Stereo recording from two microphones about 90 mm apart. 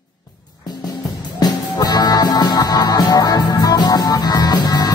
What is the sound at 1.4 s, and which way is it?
Music, 45° left (ahead or behind).